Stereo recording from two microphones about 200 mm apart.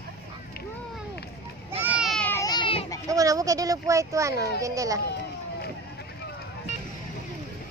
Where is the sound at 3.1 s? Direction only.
15° right (ahead or behind).